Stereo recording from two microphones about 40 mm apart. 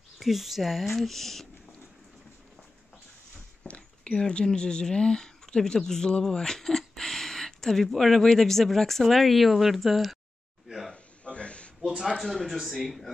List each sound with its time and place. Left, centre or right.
0.2 s speech: centre
3.6 s speech: left; by 10.1 s centre
11.2 s a sound: left
12.2 s speech: centre